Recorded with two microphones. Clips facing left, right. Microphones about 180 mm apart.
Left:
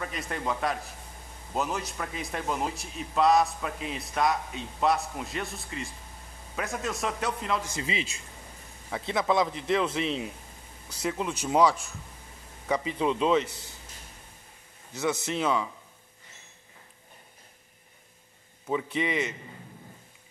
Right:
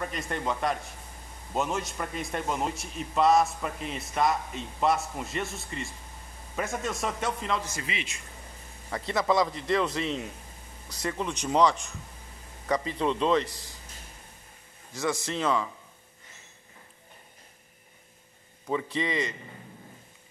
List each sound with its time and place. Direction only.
0.0 s a man's voice: centre (ahead or behind)
7.8 s a man's voice: 30° left (ahead or behind)
8.9 s a man's voice: centre (ahead or behind)
15.0 s a man's voice: 5° left (ahead or behind)
18.7 s a man's voice: 5° left (ahead or behind)